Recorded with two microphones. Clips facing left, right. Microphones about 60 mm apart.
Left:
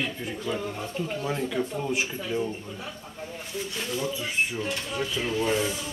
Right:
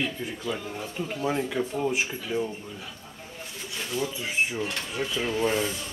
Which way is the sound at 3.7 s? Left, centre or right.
Centre.